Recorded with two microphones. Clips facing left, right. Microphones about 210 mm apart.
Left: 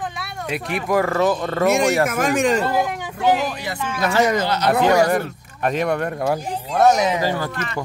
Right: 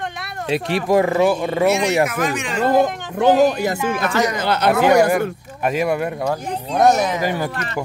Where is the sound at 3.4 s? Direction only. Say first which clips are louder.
Right 10 dB; 45° right (ahead or behind).